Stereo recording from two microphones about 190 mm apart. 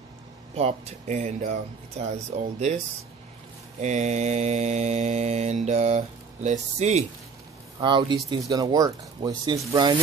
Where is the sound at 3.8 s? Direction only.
40° right (ahead or behind).